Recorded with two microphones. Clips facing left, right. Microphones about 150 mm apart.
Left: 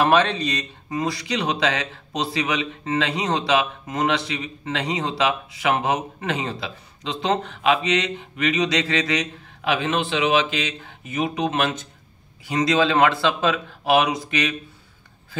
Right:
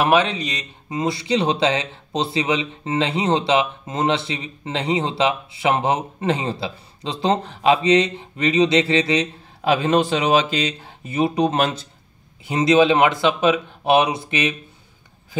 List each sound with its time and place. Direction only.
0.0 s speech: 15° right (ahead or behind); by 11.9 s 35° right (ahead or behind)
12.4 s speech: 25° right (ahead or behind)